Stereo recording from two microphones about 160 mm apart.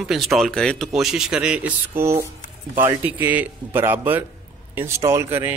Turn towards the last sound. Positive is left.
turn(degrees=-15)  # may be behind; listen again after turning